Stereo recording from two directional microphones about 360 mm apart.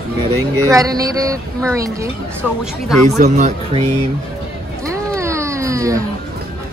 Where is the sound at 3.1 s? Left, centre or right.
Centre.